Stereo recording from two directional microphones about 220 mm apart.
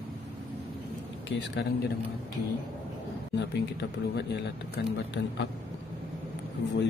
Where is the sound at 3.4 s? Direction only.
50° left (ahead or behind).